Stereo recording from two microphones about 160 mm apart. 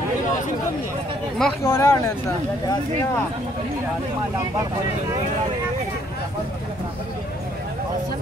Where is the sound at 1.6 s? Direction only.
20° left (ahead or behind).